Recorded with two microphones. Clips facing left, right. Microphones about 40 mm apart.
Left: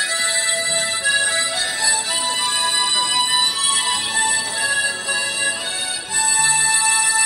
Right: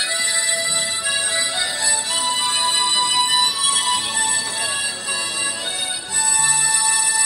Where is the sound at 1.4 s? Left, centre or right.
Centre.